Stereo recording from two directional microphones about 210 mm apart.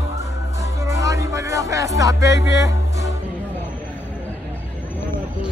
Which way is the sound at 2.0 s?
15° right (ahead or behind).